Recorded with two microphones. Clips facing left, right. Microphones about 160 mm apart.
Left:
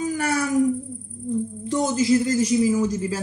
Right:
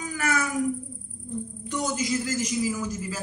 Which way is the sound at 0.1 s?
35° left (ahead or behind).